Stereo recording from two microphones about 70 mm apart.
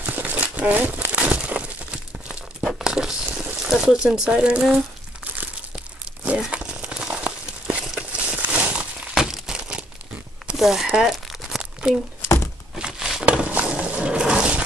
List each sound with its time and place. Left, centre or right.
0.0 s crumpling: right; by 3.2 s centre
3.6 s speech: centre
6.2 s crumpling: centre
9.1 s crumpling: centre
10.6 s crumpling: centre
12.7 s a sound: centre